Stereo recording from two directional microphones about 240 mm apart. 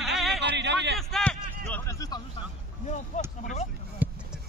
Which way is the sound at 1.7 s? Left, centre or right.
Centre.